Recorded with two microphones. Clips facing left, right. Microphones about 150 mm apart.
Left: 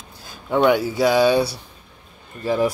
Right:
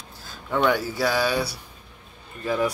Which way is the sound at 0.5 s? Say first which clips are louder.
Left 5 dB; 20° left (ahead or behind).